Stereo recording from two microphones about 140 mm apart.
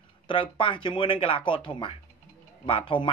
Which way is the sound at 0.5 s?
35° left (ahead or behind).